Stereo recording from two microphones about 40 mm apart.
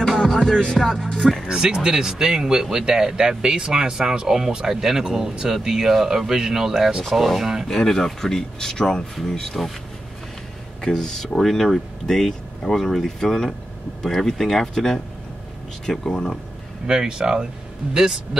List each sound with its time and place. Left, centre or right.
0.5 s speech: centre
1.5 s speech: centre
7.6 s speech: centre
10.8 s speech: centre
16.1 s speech: centre
16.8 s speech: right